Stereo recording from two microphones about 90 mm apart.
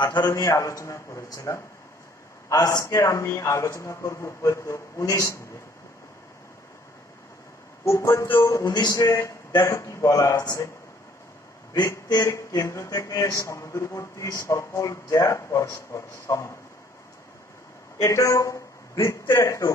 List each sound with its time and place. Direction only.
0.1 s speech: 40° left (ahead or behind)
7.8 s speech: 30° left (ahead or behind)
12.1 s speech: 40° left (ahead or behind)
18.0 s a man's voice: 35° left (ahead or behind)